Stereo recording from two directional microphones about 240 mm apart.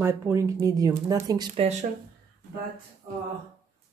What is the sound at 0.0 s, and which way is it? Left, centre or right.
Speech, centre.